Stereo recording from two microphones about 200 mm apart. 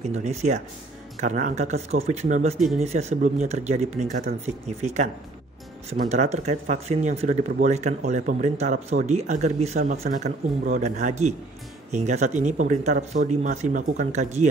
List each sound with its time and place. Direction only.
0.0 s speech: 35° right (ahead or behind)